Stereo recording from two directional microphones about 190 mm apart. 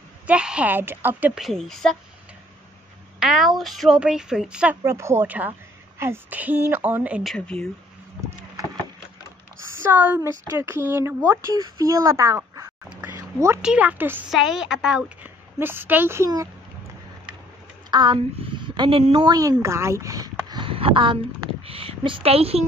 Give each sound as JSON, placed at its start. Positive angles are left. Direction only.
{"t": 0.3, "sound": "a woman's voice", "side_deg": -5}
{"t": 3.2, "sound": "a woman's voice", "side_deg": 0}
{"t": 7.3, "sound": "a woman's voice", "side_deg": 5}
{"t": 9.7, "sound": "a woman's voice", "side_deg": -10}
{"t": 17.9, "sound": "a woman's voice", "side_deg": -25}